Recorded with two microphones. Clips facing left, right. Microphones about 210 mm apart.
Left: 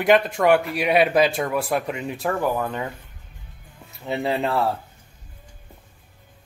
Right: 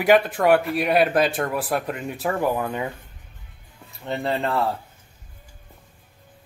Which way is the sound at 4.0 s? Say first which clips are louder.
Left 1 dB; centre (ahead or behind).